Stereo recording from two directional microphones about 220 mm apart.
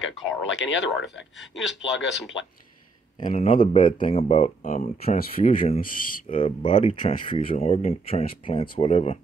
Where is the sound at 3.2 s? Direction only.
35° left (ahead or behind).